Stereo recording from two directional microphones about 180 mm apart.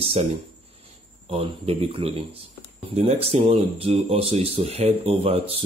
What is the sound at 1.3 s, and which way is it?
Speech, 30° right (ahead or behind).